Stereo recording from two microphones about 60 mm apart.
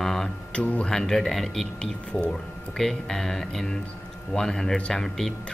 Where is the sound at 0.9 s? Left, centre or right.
Centre.